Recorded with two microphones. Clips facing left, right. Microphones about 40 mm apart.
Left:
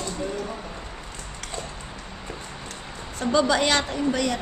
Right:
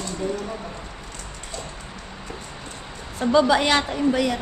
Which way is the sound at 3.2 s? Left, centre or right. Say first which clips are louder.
Right 3 dB; centre.